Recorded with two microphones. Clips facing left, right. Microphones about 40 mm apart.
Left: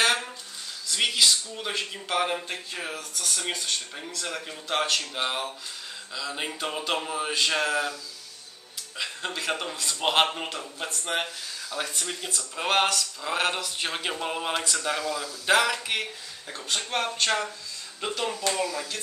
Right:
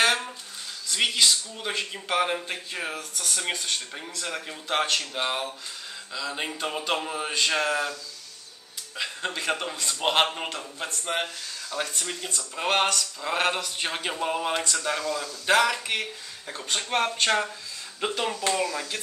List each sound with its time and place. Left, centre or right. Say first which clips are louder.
0.0 s a sound: right 1 dB; centre
0.8 s speech: even; centre
18.5 s speech: right 2 dB; centre